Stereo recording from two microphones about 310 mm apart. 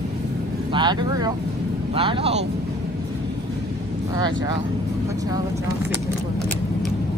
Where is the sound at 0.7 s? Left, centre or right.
Centre.